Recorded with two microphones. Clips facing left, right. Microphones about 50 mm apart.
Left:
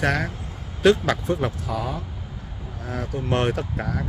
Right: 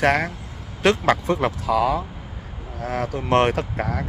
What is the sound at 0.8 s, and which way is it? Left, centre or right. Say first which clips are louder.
Speech: left 2 dB; right.